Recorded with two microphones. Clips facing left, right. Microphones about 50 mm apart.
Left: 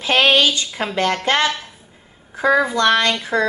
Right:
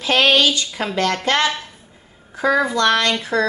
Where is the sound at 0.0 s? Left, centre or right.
Left.